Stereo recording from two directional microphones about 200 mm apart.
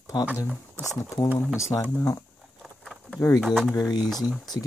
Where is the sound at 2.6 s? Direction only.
Centre (ahead or behind).